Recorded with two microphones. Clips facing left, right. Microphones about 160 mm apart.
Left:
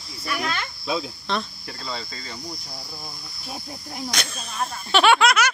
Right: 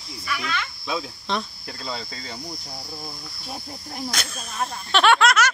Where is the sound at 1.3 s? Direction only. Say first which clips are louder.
Even; 20° right (ahead or behind).